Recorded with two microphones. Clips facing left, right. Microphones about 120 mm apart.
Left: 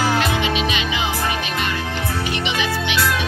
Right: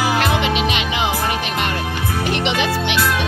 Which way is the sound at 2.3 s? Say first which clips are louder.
Right 6 dB; 65° right (ahead or behind).